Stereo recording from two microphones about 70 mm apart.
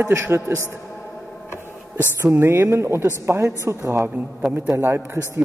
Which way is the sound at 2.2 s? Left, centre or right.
Right.